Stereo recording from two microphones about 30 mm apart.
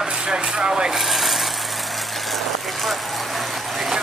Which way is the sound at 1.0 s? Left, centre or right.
Centre.